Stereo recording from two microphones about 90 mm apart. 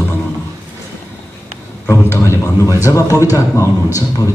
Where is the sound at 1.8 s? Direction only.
30° left (ahead or behind).